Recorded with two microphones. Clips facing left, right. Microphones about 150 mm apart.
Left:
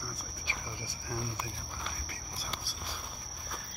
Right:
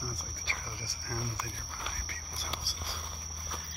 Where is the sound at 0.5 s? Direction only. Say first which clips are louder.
Left 1 dB; 20° left (ahead or behind).